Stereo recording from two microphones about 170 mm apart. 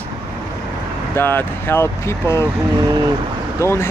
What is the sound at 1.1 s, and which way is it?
Speech, 15° left (ahead or behind).